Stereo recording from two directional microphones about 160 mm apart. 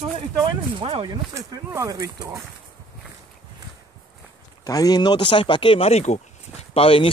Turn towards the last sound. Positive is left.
turn(degrees=35)  # may be behind; listen again after turning